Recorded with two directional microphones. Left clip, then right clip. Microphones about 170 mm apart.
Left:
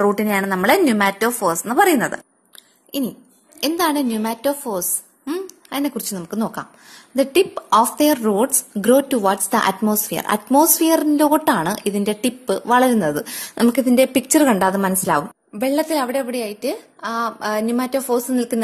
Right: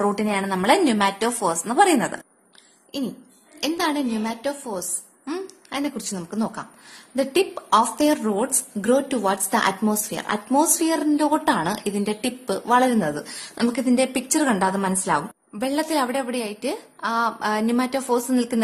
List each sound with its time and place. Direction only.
0.0 s a woman's voice: 25° left (ahead or behind)
3.6 s a woman's voice: 35° left (ahead or behind)
13.1 s a woman's voice: 45° left (ahead or behind); by 18.6 s 15° left (ahead or behind)